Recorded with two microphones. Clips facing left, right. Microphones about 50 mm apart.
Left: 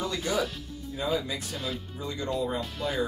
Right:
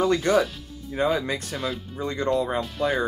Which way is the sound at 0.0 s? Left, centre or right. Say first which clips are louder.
Right 8 dB; right.